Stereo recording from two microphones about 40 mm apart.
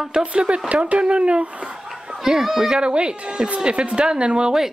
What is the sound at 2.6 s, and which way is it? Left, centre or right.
Speech, right.